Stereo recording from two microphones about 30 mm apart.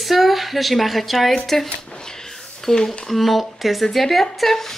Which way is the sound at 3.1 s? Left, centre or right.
Centre.